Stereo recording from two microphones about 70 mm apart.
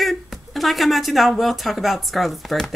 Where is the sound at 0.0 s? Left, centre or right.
Centre.